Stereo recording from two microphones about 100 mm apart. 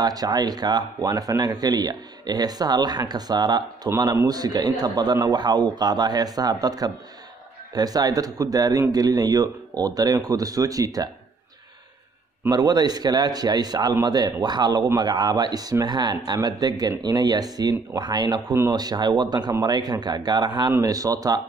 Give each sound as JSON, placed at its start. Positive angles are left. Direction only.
{"t": 0.0, "sound": "speech", "side_deg": -40}
{"t": 12.4, "sound": "speech", "side_deg": -45}